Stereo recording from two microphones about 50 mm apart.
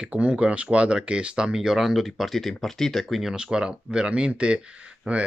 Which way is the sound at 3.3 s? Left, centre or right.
Centre.